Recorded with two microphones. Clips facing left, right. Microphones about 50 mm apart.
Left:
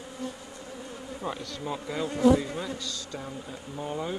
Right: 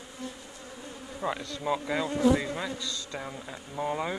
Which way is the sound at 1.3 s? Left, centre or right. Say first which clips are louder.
Right 4 dB; right.